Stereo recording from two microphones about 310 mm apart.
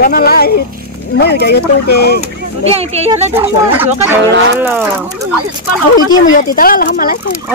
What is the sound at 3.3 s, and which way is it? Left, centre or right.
Speech, centre.